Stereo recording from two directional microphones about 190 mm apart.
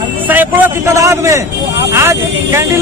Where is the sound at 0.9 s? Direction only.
15° right (ahead or behind).